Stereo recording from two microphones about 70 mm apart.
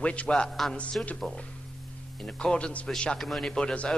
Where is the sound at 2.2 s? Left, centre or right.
Centre.